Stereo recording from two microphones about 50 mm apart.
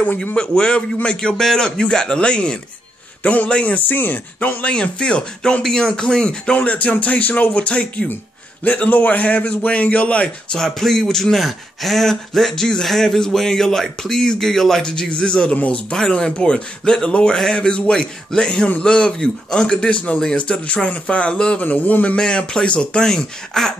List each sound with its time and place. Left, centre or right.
0.2 s speech: centre
3.7 s speech: left
10.6 s speech: centre; by 16.0 s left
16.0 s speech: centre
21.6 s a man's voice: left
22.1 s speech: centre